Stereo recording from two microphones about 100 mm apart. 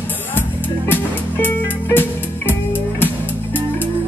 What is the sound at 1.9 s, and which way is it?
Music, 20° left (ahead or behind).